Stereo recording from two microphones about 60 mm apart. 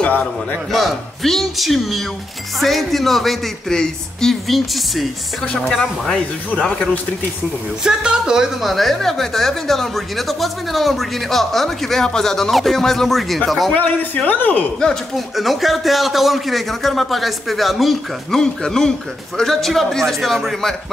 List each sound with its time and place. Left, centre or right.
0.0 s a sound: left
0.7 s a man's voice: centre
5.5 s speech: centre
7.8 s a woman's voice: centre
8.6 s a man's voice: centre
13.7 s speech: left
14.8 s speech: centre
15.3 s a man's voice: centre